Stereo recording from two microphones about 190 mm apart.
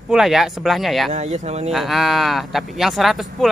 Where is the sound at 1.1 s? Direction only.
35° right (ahead or behind).